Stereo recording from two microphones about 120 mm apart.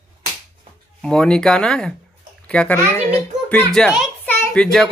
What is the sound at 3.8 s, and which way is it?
Speech, 5° left (ahead or behind).